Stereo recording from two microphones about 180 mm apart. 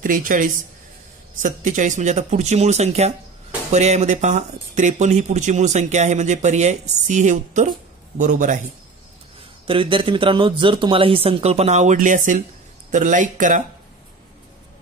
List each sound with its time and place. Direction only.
0.0 s a man's voice: 50° right (ahead or behind)
9.7 s a man's voice: 30° right (ahead or behind); by 13.6 s 45° right (ahead or behind)